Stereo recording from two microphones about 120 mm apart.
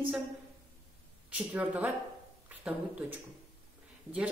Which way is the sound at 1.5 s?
15° right (ahead or behind).